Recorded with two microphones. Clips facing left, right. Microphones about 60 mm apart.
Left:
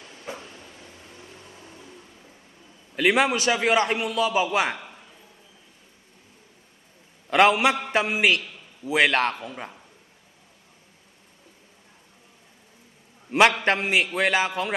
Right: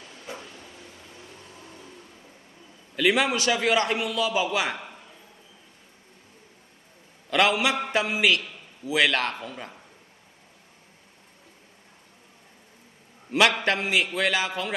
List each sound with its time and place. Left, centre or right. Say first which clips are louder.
0.3 s a sound: left 2 dB; left
3.0 s a man's voice: left 2 dB; left
7.2 s a man's voice: left 4 dB; left
13.3 s a man's voice: left 3 dB; left